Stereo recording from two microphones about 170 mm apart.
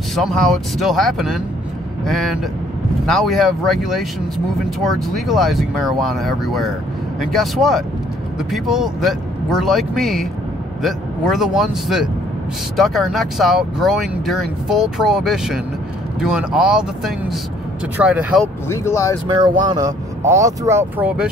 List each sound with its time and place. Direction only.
0.1 s speech: centre (ahead or behind)
18.7 s speech: 15° left (ahead or behind)
19.2 s speech: 25° right (ahead or behind)